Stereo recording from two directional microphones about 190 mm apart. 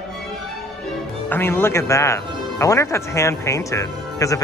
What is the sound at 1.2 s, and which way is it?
A man's voice, 10° left (ahead or behind).